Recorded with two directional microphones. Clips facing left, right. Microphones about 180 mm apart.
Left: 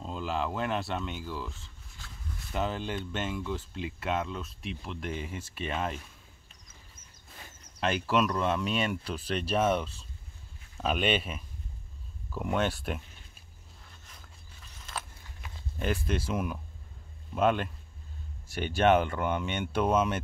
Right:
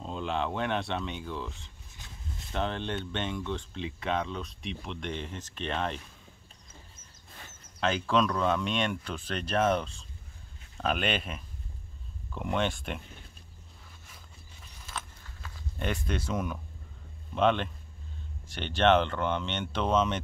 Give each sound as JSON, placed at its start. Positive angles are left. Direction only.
{"t": 0.0, "sound": "speech", "side_deg": 0}
{"t": 1.9, "sound": "a sound", "side_deg": -20}
{"t": 2.5, "sound": "speech", "side_deg": 5}
{"t": 7.4, "sound": "speech", "side_deg": 10}
{"t": 15.4, "sound": "walk", "side_deg": 20}
{"t": 15.8, "sound": "speech", "side_deg": 5}